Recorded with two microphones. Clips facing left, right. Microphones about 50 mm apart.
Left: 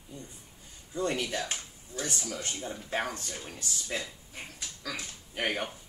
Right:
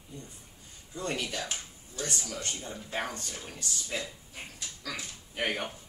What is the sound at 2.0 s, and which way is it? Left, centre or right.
Speech, centre.